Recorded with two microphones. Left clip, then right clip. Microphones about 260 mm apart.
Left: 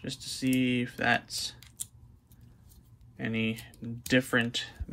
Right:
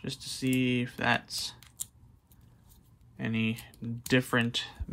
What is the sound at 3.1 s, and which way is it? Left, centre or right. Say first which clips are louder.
Speech: left 1 dB; centre.